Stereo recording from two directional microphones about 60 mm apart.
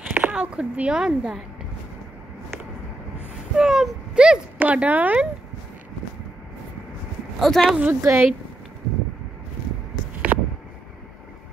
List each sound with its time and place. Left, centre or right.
0.1 s speech: right
1.0 s a woman's voice: centre
3.5 s speech: centre
4.6 s speech: right
7.3 s speech: centre
7.6 s a woman's voice: centre
7.9 s speech: right
10.3 s a sound: right